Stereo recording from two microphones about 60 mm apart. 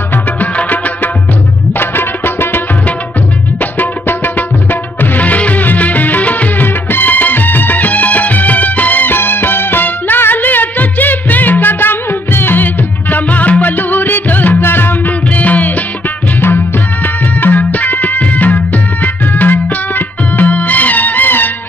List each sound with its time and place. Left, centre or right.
0.6 s music: left
1.7 s music: left
3.7 s music: left
16.3 s music: left